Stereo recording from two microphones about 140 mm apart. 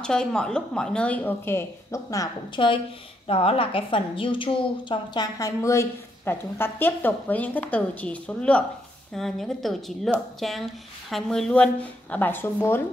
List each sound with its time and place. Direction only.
0.0 s speech: 5° left (ahead or behind); by 2.6 s 25° left (ahead or behind)
3.3 s a woman's voice: 45° left (ahead or behind); by 12.8 s 15° left (ahead or behind)